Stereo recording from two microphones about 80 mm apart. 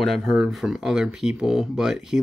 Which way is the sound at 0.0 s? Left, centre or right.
Centre.